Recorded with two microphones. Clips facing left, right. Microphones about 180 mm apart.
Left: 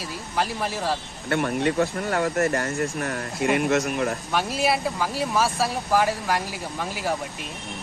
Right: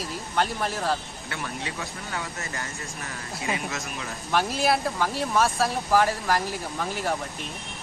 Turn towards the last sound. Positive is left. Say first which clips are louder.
# even
turn(degrees=0)  # may be behind; listen again after turning